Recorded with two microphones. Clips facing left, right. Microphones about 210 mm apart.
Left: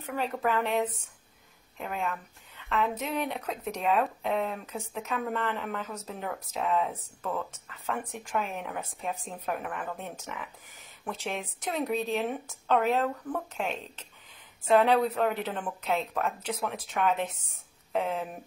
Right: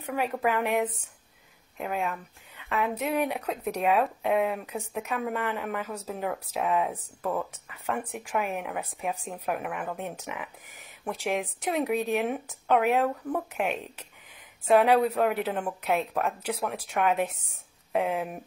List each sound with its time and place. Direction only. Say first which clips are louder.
0.0 s a woman's voice: right 2 dB; 15° right (ahead or behind)
2.7 s a woman's voice: right 2 dB; 15° right (ahead or behind)
16.3 s speech: right 2 dB; centre (ahead or behind)
17.0 s a woman's voice: right 2 dB; 15° right (ahead or behind)